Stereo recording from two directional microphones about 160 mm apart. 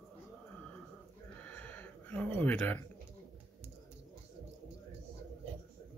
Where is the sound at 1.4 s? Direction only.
10° left (ahead or behind).